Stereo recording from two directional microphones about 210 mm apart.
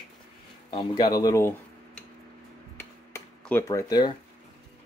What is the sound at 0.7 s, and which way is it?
Speech, 20° left (ahead or behind).